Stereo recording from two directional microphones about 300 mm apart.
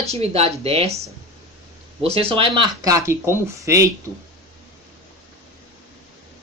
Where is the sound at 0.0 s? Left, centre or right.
Centre.